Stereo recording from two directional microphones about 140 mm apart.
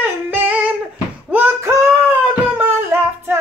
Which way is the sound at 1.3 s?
15° right (ahead or behind).